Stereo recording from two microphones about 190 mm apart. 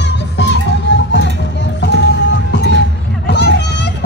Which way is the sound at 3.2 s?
60° left (ahead or behind).